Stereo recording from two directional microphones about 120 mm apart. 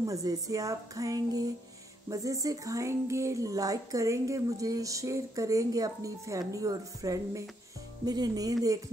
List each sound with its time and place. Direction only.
0.0 s speech: 30° right (ahead or behind)